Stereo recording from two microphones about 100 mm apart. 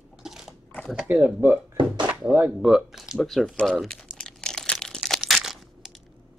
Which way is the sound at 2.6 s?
Centre (ahead or behind).